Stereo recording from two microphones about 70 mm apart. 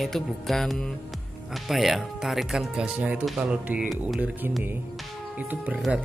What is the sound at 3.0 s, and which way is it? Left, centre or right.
Speech, right.